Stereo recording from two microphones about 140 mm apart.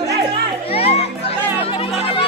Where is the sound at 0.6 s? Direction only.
45° left (ahead or behind).